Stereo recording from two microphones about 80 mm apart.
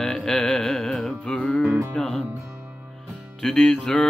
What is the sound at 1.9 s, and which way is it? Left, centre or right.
Music, centre.